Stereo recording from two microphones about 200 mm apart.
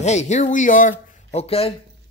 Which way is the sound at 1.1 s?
30° left (ahead or behind).